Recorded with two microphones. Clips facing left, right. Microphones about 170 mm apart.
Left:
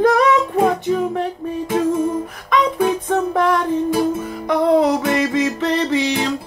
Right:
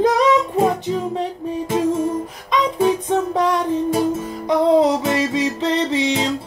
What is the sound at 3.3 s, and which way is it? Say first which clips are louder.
Music: left 1 dB; 20° right (ahead or behind).